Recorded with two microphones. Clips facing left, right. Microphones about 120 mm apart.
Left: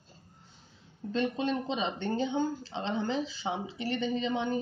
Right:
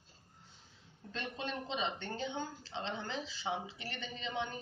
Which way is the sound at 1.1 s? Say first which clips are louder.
Left 11 dB; 20° left (ahead or behind).